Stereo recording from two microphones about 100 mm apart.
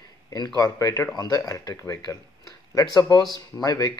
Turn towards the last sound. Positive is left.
turn(degrees=35)  # may be behind; listen again after turning